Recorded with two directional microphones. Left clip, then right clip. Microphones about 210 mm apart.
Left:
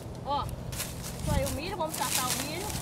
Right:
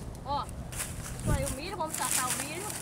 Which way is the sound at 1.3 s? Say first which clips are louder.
Left 3 dB; centre (ahead or behind).